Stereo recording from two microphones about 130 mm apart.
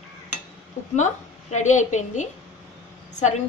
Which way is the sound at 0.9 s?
65° left (ahead or behind).